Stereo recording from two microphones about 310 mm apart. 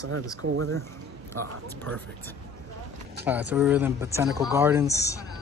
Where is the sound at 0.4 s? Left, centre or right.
Right.